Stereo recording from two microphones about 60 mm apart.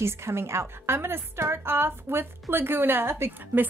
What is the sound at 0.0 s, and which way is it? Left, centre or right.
A woman's voice, right.